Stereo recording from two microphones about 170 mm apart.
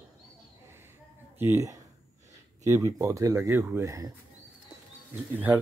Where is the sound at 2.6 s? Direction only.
20° right (ahead or behind).